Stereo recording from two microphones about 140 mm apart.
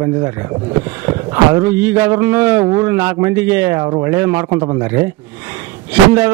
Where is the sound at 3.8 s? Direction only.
35° right (ahead or behind).